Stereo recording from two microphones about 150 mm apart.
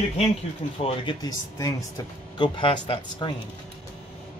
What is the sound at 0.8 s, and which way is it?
Speech, 30° left (ahead or behind).